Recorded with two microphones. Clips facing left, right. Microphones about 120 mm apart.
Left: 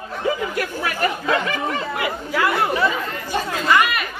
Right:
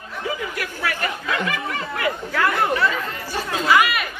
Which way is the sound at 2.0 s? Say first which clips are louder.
Right 2 dB; 10° left (ahead or behind).